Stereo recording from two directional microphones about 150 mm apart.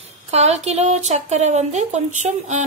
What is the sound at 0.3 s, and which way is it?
Speech, 45° right (ahead or behind).